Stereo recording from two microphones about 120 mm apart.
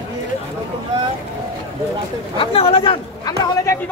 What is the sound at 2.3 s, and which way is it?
Speech, 55° left (ahead or behind).